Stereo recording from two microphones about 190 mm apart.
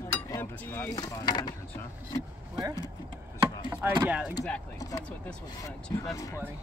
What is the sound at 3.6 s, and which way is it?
Chopping, 15° right (ahead or behind).